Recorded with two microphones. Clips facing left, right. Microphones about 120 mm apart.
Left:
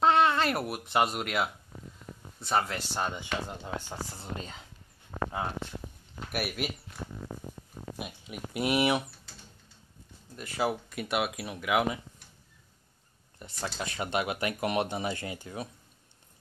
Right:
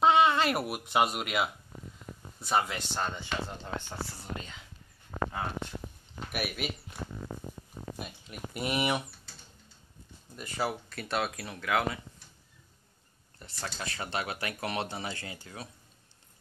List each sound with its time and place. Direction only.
0.0 s speech: centre (ahead or behind)
2.9 s speech: 10° left (ahead or behind)
4.2 s speech: 35° left (ahead or behind)
6.1 s speech: centre (ahead or behind)
8.0 s speech: 5° left (ahead or behind)
10.3 s speech: centre (ahead or behind)
10.6 s speech: 15° left (ahead or behind)
13.4 s speech: 15° left (ahead or behind)